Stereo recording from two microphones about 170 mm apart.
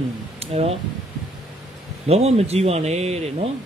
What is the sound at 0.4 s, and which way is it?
Speech, 35° right (ahead or behind).